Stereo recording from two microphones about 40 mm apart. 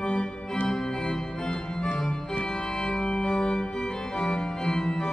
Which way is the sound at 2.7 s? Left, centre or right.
Centre.